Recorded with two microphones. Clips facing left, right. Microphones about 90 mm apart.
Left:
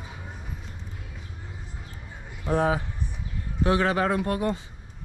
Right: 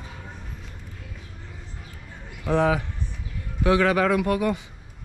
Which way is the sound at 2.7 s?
25° left (ahead or behind).